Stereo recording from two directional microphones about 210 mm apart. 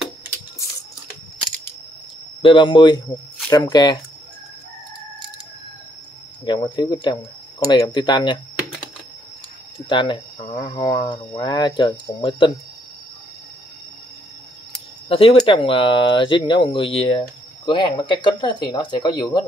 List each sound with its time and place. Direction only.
2.4 s speech: 25° left (ahead or behind)
6.4 s speech: 20° left (ahead or behind)
9.8 s speech: 25° left (ahead or behind)
15.0 s speech: 25° left (ahead or behind)